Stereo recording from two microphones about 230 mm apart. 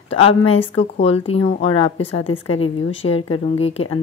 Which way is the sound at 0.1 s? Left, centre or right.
Left.